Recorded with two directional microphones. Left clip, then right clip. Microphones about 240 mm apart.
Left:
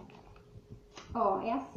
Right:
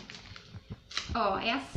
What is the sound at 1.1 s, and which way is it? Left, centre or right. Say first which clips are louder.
Speech: right 1 dB; right.